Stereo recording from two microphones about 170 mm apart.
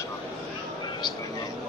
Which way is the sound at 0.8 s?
25° left (ahead or behind).